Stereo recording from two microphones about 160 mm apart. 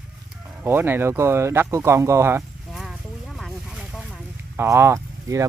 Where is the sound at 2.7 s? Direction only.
Centre (ahead or behind).